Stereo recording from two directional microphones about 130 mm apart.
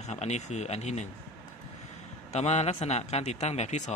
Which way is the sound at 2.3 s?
60° left (ahead or behind).